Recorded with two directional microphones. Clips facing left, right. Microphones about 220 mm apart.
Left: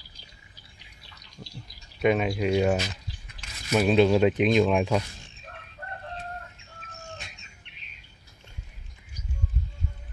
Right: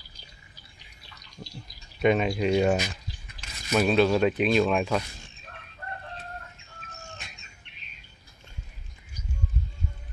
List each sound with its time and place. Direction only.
2.0 s speech: 5° left (ahead or behind)
3.4 s a sound: 40° right (ahead or behind)
3.7 s speech: 15° left (ahead or behind)